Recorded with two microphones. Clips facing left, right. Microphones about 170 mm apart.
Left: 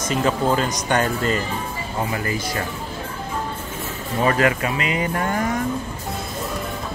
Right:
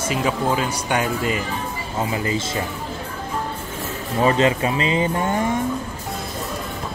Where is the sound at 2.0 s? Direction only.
20° right (ahead or behind).